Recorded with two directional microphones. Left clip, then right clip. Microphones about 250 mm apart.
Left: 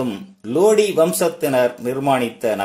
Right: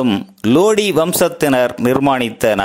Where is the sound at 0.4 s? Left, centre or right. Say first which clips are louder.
Right 2 dB; right.